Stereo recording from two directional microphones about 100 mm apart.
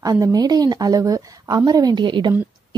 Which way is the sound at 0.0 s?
40° right (ahead or behind).